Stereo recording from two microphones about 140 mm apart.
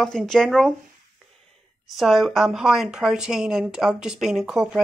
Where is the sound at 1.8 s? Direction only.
Centre (ahead or behind).